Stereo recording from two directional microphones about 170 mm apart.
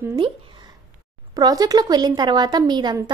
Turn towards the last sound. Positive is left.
turn(degrees=-25)  # may be behind; listen again after turning